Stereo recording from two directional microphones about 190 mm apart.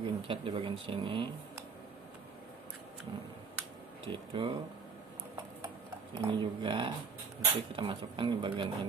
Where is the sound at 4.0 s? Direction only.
25° right (ahead or behind).